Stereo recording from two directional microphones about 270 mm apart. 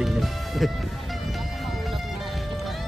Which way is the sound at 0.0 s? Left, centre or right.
Centre.